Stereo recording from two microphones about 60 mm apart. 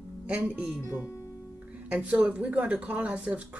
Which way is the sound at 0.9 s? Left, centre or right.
Left.